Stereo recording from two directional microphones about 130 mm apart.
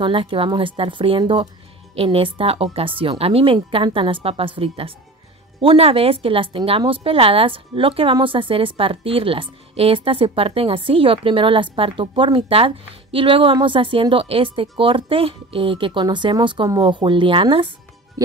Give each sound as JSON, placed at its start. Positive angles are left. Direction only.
{"t": 0.0, "sound": "a woman's voice", "side_deg": -40}